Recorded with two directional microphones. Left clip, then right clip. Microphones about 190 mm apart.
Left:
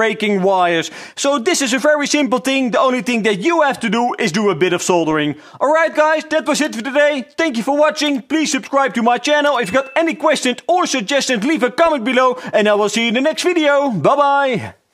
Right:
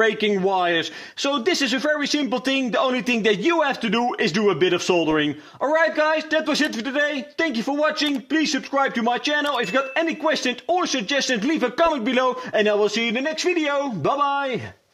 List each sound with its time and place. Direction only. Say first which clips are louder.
0.0 s a man's voice: left 4 dB; 35° left (ahead or behind)